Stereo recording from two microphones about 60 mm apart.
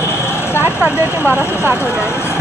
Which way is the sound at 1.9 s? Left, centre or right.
Left.